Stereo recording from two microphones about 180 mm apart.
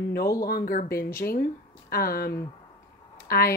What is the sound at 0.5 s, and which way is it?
Speech, 50° left (ahead or behind).